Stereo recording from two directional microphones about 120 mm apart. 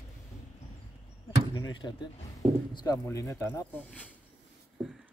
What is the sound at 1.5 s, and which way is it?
Speech, 40° left (ahead or behind).